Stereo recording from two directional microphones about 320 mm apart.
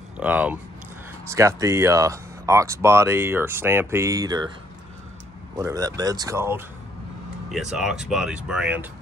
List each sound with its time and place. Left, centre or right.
0.2 s speech: centre
5.6 s speech: centre